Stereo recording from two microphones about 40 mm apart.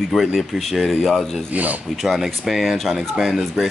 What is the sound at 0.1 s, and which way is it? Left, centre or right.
Speech, centre.